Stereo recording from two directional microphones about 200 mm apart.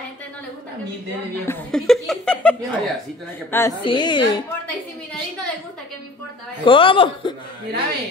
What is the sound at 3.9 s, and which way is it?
Speech, 20° left (ahead or behind).